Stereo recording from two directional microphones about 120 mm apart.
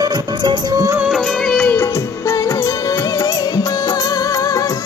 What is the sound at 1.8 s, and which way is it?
Music of bollywood, 25° left (ahead or behind).